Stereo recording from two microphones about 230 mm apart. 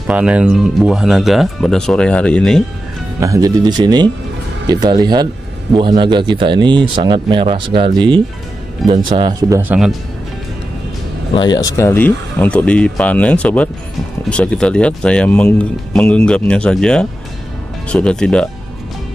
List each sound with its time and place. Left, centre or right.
0.0 s speech: centre
3.2 s speech: centre
11.3 s speech: centre